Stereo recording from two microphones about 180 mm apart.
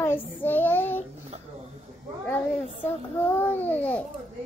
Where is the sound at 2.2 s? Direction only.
10° left (ahead or behind).